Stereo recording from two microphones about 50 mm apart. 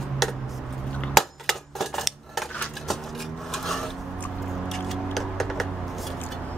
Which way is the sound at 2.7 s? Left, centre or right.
Centre.